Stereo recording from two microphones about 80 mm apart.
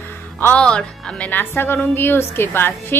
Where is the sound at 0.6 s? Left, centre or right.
Centre.